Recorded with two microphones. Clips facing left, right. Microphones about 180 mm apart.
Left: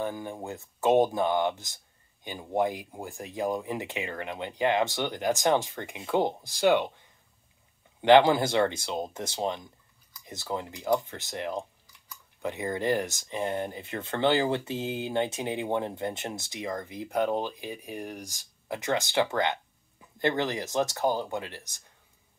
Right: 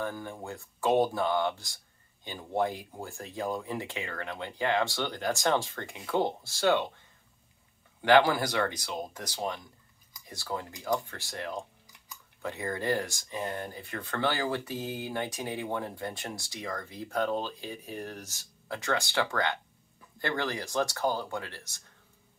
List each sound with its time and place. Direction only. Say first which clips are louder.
0.0 s speech: left 3 dB; 15° left (ahead or behind)